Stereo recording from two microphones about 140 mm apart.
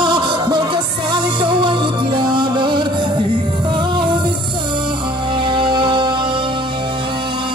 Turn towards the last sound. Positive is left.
turn(degrees=-35)  # may be behind; listen again after turning